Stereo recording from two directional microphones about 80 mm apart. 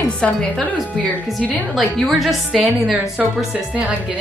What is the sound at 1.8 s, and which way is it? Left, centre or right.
A woman's voice, centre.